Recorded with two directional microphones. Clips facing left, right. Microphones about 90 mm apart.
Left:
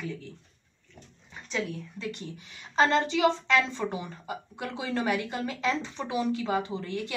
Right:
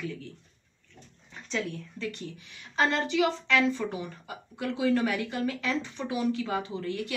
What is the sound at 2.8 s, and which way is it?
A woman's voice, 25° left (ahead or behind).